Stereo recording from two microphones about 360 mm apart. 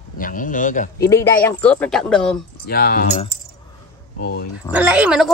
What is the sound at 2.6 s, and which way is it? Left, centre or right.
A man's voice, left.